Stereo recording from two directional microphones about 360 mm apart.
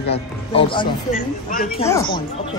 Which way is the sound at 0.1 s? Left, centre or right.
Centre.